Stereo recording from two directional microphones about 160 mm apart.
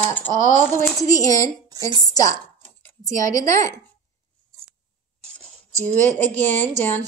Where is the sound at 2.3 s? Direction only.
50° right (ahead or behind).